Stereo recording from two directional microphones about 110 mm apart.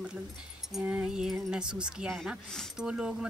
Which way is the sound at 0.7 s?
10° right (ahead or behind).